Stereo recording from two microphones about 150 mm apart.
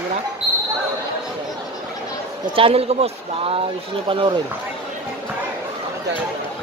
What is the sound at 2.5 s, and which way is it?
A man's voice, 40° right (ahead or behind).